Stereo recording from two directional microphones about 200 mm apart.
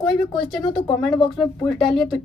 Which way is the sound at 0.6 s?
20° left (ahead or behind).